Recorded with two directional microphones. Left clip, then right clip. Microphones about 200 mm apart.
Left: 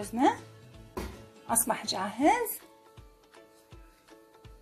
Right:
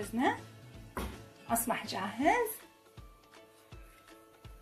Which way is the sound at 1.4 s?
45° left (ahead or behind).